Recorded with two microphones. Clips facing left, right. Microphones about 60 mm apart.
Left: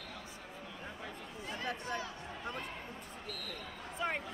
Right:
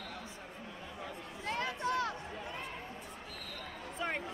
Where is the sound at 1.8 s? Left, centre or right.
Right.